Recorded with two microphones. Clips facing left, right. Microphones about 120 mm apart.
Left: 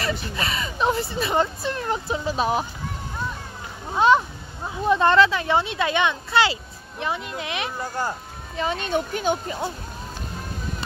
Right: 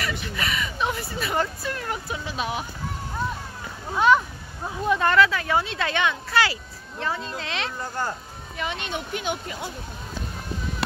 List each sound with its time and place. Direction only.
0.0 s speech: 30° left (ahead or behind)
3.9 s a child's voice: 25° left (ahead or behind)
8.5 s speech: 40° left (ahead or behind)